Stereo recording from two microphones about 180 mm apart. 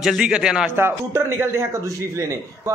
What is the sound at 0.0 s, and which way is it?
A man's voice, 5° right (ahead or behind).